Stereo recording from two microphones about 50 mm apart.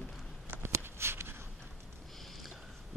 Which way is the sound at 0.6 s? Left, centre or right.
Right.